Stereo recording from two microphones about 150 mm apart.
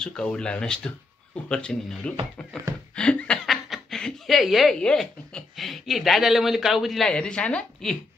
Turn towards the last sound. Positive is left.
turn(degrees=5)  # may be behind; listen again after turning